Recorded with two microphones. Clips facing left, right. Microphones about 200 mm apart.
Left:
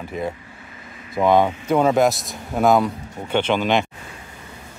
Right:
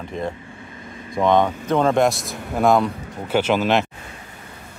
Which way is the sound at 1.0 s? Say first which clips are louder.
Left 1 dB; 5° left (ahead or behind).